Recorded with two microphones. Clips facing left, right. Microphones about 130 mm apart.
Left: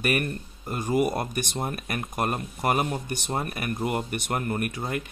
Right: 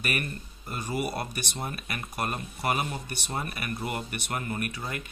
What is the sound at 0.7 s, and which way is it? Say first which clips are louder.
Speech: left 7 dB; 45° left (ahead or behind).